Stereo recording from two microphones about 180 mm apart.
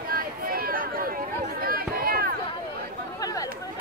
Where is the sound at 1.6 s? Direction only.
55° right (ahead or behind).